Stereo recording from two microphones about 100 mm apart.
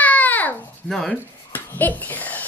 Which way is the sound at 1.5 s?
20° left (ahead or behind).